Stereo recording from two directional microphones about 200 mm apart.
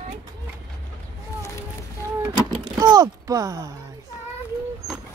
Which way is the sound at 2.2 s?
20° right (ahead or behind).